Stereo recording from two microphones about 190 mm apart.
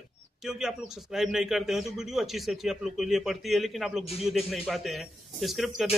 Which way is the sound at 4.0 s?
30° left (ahead or behind).